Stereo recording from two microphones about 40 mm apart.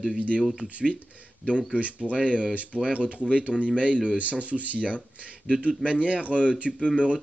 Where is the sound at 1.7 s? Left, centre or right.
Right.